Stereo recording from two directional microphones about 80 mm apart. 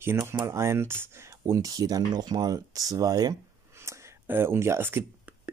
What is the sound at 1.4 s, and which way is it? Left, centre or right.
Speech, right.